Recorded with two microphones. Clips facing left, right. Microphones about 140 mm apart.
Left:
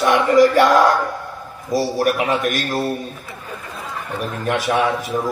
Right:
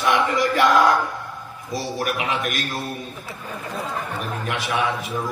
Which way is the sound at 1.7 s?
40° left (ahead or behind).